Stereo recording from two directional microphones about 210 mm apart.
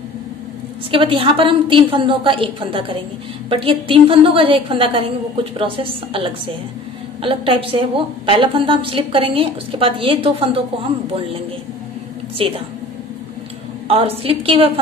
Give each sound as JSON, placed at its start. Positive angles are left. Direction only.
{"t": 0.9, "sound": "a woman's voice", "side_deg": -25}
{"t": 7.2, "sound": "a woman's voice", "side_deg": -25}
{"t": 13.8, "sound": "a woman's voice", "side_deg": -25}